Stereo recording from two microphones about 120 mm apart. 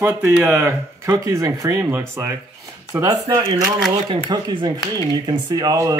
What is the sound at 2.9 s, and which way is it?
Speech, 35° right (ahead or behind).